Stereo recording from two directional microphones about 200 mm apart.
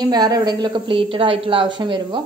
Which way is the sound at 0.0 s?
20° right (ahead or behind).